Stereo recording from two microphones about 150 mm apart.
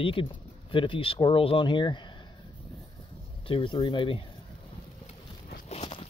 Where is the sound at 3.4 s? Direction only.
35° left (ahead or behind).